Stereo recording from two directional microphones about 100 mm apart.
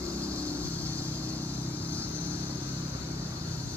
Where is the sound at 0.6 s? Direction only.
15° left (ahead or behind).